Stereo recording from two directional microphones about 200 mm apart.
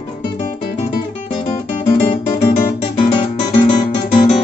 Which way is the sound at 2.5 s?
30° left (ahead or behind).